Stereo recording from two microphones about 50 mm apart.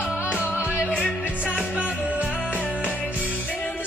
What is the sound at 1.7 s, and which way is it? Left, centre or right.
Music, right.